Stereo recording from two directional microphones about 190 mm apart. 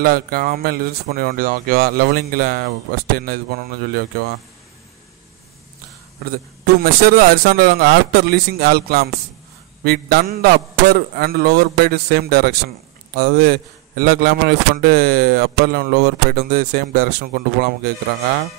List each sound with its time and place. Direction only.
0.0 s speech: 50° right (ahead or behind)
6.3 s speech: 50° right (ahead or behind)